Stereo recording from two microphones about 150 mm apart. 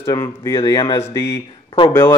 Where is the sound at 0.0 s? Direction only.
20° left (ahead or behind).